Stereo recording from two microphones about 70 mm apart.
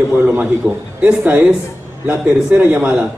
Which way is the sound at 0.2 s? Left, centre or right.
Right.